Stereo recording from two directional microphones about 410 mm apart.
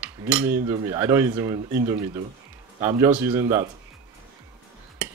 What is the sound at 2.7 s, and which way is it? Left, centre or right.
Cutlery, centre.